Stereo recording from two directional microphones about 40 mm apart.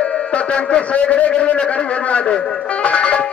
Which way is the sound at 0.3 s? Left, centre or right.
Left.